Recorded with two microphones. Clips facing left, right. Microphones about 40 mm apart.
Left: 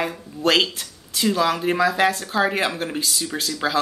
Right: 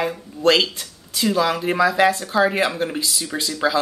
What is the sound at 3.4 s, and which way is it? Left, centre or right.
Speech, centre.